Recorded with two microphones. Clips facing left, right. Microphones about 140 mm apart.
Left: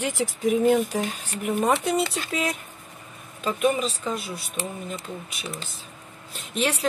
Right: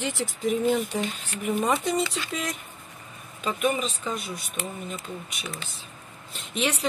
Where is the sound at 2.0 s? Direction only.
40° left (ahead or behind).